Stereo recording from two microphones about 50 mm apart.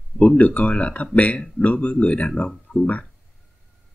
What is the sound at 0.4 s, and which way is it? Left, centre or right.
Speech, left.